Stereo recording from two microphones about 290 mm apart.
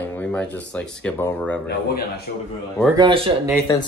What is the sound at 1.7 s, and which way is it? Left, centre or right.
Speech, left.